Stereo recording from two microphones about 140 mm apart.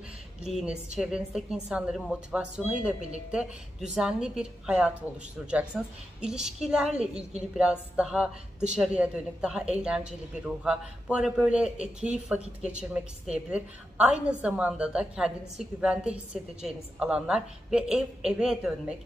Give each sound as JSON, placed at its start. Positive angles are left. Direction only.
{"t": 0.4, "sound": "a woman's voice", "side_deg": -5}